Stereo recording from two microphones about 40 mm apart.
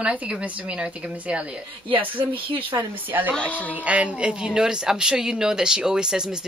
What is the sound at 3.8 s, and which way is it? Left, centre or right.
Speech, right.